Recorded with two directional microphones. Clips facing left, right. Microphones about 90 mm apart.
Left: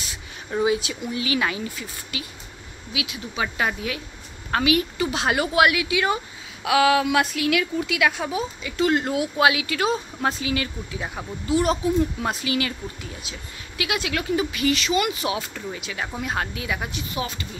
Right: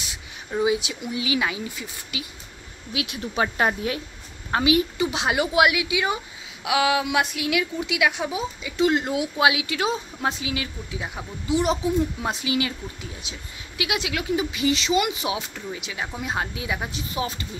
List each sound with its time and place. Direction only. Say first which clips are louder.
0.8 s a woman's voice: left 1 dB; 10° right (ahead or behind)
2.9 s speech: right 2 dB; 45° right (ahead or behind)
4.5 s a woman's voice: right 1 dB; 20° right (ahead or behind)
11.5 s a woman's voice: left 1 dB; 20° right (ahead or behind)
16.9 s speech: right 1 dB; 30° right (ahead or behind)